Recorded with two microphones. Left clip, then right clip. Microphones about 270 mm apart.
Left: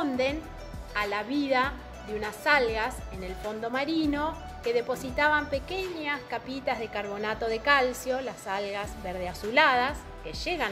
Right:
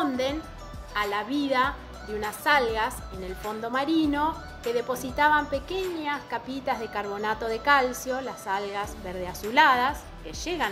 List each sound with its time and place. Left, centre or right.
0.0 s music: centre
0.9 s a woman's voice: centre